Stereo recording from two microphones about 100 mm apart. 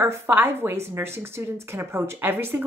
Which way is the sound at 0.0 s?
25° right (ahead or behind).